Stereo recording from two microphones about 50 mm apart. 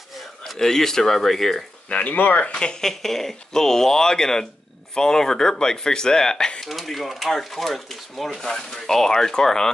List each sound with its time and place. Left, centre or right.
0.5 s speech: centre
1.9 s speech: left
2.5 s speech: centre
6.7 s speech: centre